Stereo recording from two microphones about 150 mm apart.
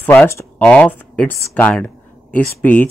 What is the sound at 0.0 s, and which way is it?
Speech, 15° left (ahead or behind).